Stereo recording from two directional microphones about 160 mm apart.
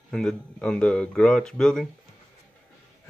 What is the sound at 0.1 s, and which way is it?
Speech, 5° left (ahead or behind).